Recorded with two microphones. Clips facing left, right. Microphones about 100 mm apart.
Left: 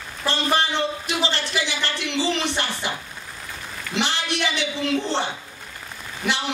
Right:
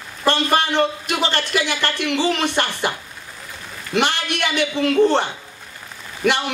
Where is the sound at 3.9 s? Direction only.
55° right (ahead or behind).